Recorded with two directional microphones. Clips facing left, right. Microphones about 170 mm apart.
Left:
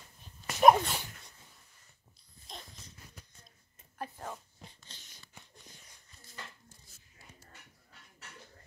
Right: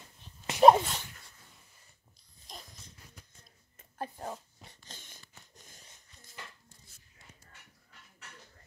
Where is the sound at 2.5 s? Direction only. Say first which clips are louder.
Left 1 dB; centre (ahead or behind).